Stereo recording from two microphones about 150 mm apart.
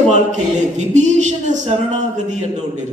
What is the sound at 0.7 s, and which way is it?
A woman's voice, 50° right (ahead or behind).